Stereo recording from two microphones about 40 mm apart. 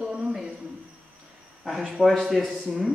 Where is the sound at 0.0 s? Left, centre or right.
Centre.